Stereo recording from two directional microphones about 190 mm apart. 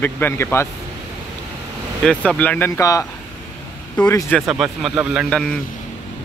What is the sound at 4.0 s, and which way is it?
Speech, 5° left (ahead or behind).